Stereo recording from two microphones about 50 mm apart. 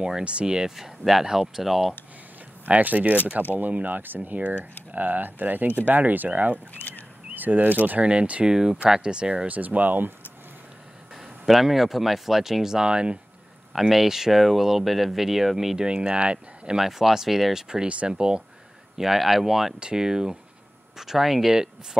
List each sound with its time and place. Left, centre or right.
0.0 s speech: right; by 2.0 s centre
2.7 s speech: right
6.8 s a sound: left
7.3 s speech: right; by 9.5 s centre
9.5 s speech: right
11.1 s speech: centre
13.7 s speech: centre
15.9 s speech: right
16.7 s speech: centre
18.9 s speech: centre